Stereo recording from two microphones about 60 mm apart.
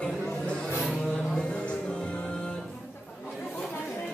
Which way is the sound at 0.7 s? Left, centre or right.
Centre.